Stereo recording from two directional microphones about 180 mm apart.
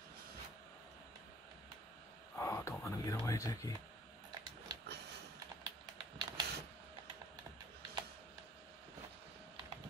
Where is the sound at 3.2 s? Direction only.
15° left (ahead or behind).